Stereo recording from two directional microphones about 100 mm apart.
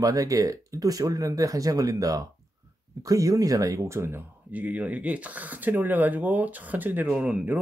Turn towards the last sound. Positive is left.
turn(degrees=-15)  # may be behind; listen again after turning